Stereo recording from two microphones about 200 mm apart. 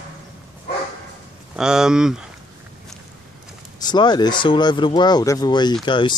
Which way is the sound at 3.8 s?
20° left (ahead or behind).